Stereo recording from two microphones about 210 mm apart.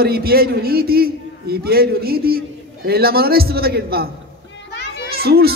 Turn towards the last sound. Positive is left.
turn(degrees=-45)  # may be behind; listen again after turning